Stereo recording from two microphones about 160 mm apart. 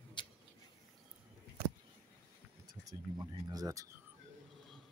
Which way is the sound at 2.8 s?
25° right (ahead or behind).